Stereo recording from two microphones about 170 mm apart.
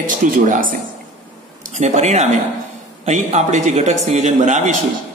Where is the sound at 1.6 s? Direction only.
45° right (ahead or behind).